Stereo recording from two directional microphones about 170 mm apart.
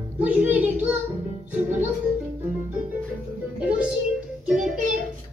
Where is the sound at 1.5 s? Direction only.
10° right (ahead or behind).